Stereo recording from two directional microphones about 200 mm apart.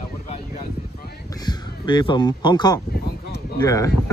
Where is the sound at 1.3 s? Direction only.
20° left (ahead or behind).